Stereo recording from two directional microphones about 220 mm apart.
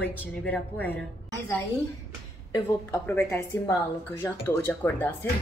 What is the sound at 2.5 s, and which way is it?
A woman's voice, 15° left (ahead or behind).